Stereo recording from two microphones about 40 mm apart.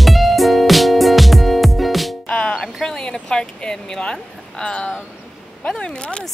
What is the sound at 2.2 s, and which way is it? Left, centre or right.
Music, left.